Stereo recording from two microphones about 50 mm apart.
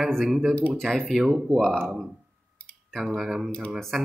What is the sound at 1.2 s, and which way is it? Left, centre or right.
Speech, centre.